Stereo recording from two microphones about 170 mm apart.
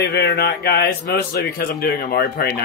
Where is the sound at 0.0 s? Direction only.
70° left (ahead or behind).